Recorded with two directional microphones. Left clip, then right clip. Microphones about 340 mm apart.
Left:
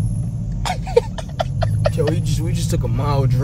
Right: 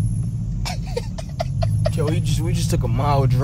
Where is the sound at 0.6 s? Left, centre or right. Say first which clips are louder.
Left 12 dB; left.